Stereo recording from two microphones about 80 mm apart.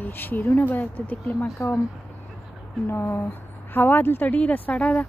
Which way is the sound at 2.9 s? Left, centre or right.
Left.